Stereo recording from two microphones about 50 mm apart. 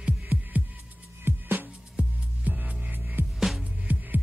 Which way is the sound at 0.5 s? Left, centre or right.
Right.